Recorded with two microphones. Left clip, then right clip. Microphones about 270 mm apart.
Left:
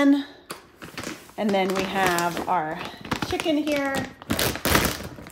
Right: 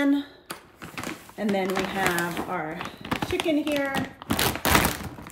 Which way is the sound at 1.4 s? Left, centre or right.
Left.